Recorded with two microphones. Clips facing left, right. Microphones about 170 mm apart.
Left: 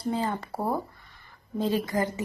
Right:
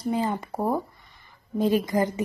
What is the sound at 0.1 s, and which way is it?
Speech, 15° right (ahead or behind).